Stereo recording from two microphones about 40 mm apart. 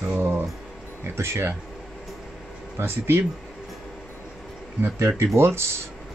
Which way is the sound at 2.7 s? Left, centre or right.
Right.